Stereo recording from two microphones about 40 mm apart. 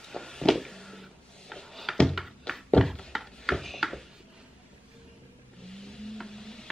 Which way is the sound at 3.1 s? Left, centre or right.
Centre.